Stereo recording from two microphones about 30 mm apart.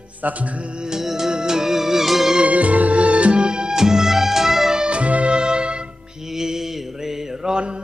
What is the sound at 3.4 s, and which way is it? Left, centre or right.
Music, right.